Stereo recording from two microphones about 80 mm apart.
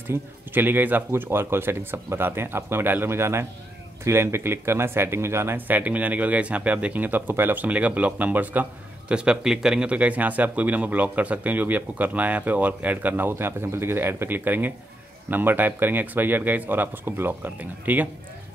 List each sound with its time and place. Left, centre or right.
0.1 s speech: right
9.1 s speech: centre